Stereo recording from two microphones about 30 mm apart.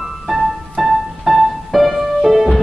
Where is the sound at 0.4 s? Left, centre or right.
Centre.